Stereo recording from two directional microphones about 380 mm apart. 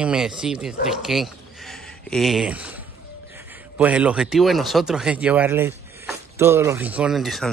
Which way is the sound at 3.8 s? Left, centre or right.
Centre.